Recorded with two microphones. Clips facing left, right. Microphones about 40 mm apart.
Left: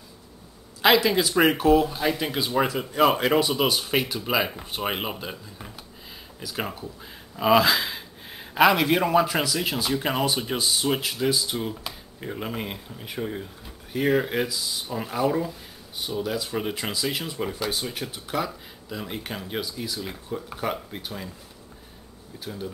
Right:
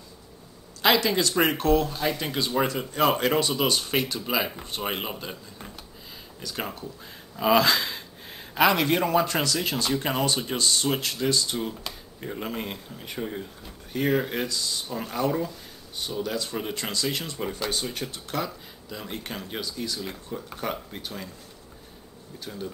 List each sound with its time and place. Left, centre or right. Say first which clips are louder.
0.8 s speech: left 2 dB; centre
22.4 s speech: left 1 dB; centre